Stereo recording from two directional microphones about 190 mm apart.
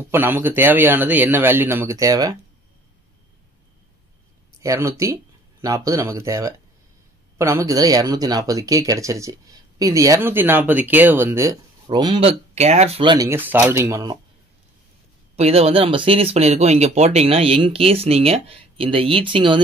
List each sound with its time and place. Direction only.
0.1 s speech: 10° right (ahead or behind)
4.6 s speech: 15° right (ahead or behind)
13.3 s speech: 10° right (ahead or behind)
15.3 s speech: 30° right (ahead or behind)